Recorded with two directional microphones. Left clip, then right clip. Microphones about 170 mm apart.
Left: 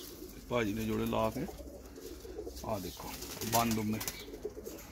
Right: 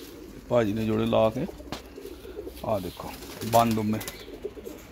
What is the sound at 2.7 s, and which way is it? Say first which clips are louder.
Speech: right 11 dB; 45° right (ahead or behind).